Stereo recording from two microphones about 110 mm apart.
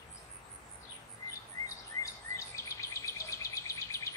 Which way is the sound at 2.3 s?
30° left (ahead or behind).